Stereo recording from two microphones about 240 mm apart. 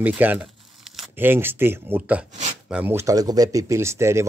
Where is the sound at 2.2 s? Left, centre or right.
Right.